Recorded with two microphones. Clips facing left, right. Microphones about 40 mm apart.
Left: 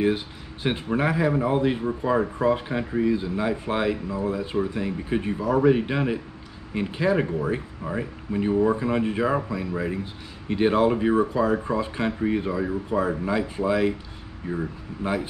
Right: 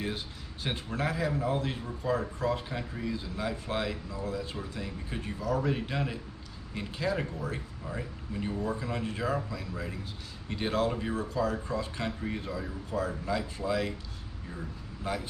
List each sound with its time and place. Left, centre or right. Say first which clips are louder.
0.0 s speech: left 12 dB; left